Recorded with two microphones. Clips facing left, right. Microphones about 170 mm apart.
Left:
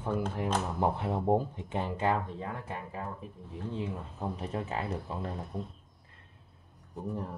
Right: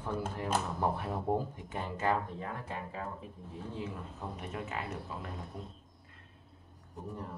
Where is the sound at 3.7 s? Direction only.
30° left (ahead or behind).